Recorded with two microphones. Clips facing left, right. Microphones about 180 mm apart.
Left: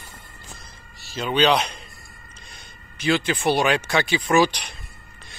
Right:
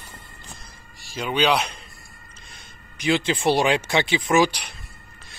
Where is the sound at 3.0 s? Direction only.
25° right (ahead or behind).